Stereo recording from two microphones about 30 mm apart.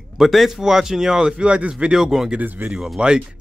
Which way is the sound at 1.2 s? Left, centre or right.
Right.